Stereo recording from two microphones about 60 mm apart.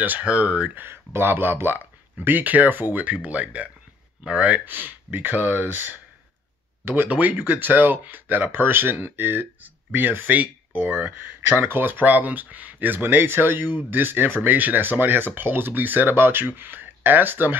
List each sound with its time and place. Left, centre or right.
0.2 s speech: right
0.8 s speech: right; by 4.6 s centre
4.6 s speech: right